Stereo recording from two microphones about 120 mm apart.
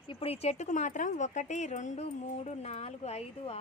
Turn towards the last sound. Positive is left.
turn(degrees=60)  # may be behind; listen again after turning